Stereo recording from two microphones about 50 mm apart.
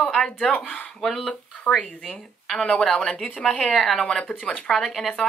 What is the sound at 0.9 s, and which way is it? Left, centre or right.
Music, centre.